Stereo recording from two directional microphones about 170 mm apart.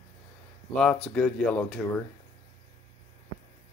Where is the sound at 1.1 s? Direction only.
10° left (ahead or behind).